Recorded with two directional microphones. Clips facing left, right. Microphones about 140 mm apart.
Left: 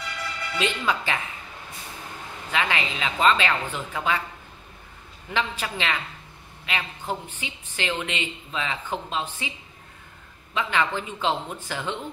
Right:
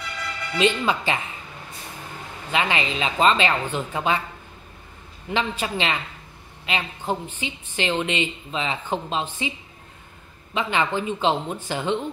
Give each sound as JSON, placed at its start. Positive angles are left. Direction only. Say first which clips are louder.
{"t": 0.6, "sound": "a woman's voice", "louder": "right 5 dB", "side_deg": -20}
{"t": 2.5, "sound": "a woman's voice", "louder": "right 3 dB", "side_deg": -25}
{"t": 5.3, "sound": "a woman's voice", "louder": "right 3 dB", "side_deg": -20}